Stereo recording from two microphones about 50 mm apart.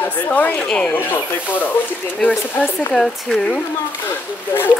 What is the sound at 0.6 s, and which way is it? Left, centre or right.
Speech, centre.